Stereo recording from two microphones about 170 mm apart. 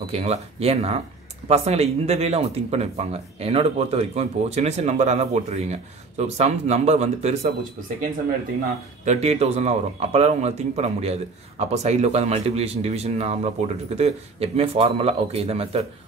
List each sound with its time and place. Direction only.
0.0 s a man's voice: 35° right (ahead or behind)
9.0 s a man's voice: 40° right (ahead or behind)